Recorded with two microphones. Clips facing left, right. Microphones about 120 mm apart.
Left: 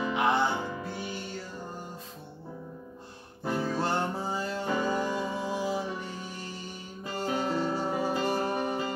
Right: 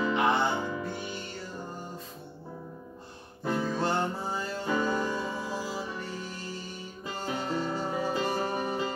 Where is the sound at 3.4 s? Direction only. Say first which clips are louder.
Even; 10° left (ahead or behind).